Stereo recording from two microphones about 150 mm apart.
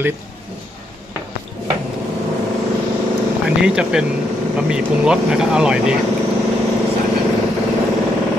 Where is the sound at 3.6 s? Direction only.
5° right (ahead or behind).